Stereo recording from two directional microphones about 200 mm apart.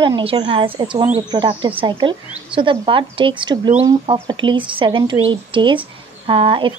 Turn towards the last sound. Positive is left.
turn(degrees=-25)  # may be behind; listen again after turning